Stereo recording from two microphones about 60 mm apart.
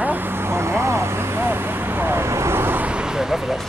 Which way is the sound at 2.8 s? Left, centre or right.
Centre.